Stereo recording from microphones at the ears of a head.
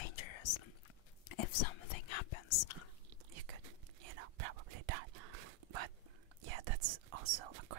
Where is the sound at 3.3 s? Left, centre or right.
Right.